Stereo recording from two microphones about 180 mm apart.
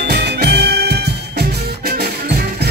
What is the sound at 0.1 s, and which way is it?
Music, 65° right (ahead or behind).